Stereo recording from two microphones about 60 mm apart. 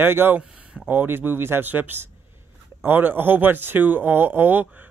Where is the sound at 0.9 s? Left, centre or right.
Right.